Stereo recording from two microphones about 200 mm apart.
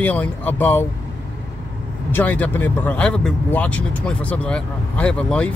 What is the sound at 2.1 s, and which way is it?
Speech, 10° left (ahead or behind).